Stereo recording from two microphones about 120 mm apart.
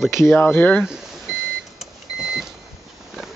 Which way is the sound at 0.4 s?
15° left (ahead or behind).